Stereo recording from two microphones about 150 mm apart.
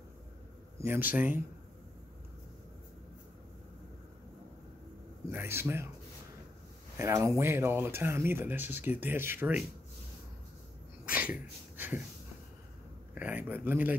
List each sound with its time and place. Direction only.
0.7 s speech: 15° right (ahead or behind)
5.3 s speech: 15° right (ahead or behind)
7.0 s speech: 20° right (ahead or behind)
11.1 s a sound: 10° right (ahead or behind)
13.1 s speech: 10° right (ahead or behind)